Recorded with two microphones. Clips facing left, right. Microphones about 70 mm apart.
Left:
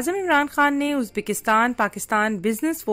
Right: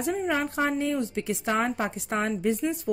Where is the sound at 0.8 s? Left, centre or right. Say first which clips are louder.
Left 4 dB; left.